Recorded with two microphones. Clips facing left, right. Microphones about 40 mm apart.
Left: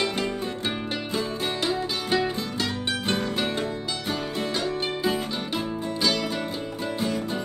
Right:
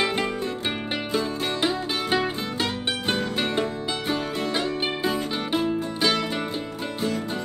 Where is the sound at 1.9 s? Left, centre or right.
Centre.